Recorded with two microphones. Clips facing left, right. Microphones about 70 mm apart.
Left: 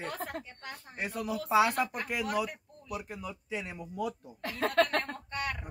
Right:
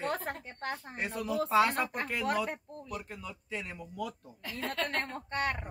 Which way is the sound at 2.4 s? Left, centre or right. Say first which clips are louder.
Right 2 dB; right.